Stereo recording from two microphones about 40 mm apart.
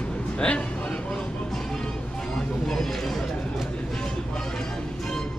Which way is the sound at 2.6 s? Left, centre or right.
Centre.